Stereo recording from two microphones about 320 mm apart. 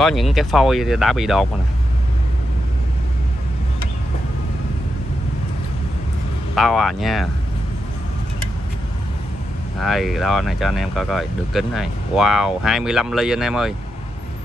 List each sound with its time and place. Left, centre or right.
0.0 s speech: centre
6.5 s speech: centre
9.8 s speech: centre